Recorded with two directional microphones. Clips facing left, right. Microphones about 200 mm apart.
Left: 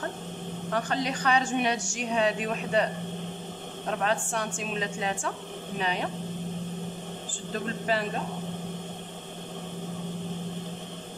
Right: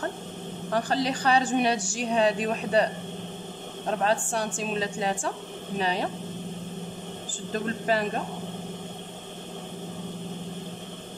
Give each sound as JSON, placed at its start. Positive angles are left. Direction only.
{"t": 0.7, "sound": "a woman's voice", "side_deg": -35}